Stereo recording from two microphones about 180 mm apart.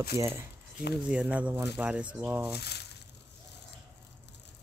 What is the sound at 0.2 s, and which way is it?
Speech, 15° right (ahead or behind).